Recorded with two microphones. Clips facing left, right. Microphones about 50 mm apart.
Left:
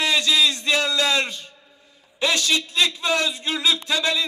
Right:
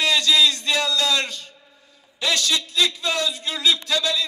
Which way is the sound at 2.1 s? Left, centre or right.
Left.